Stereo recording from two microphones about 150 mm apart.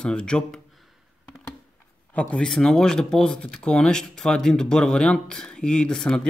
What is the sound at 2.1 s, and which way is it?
Speech, 10° left (ahead or behind).